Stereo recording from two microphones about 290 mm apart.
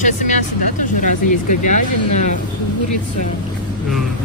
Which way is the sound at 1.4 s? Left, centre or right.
Left.